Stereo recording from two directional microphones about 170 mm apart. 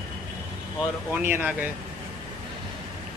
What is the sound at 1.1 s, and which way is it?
Speech, 10° right (ahead or behind).